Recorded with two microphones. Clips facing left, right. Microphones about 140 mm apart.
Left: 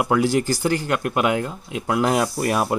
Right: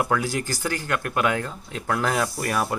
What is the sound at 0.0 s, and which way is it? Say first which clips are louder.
Speech: left 5 dB; 20° left (ahead or behind).